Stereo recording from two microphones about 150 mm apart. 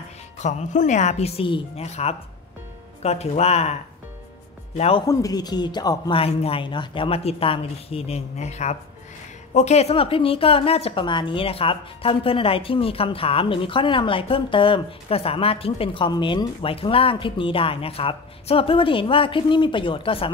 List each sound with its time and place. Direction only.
0.4 s a woman's voice: 55° left (ahead or behind)
4.7 s a woman's voice: 45° left (ahead or behind)
5.0 s a woman's voice: 25° left (ahead or behind)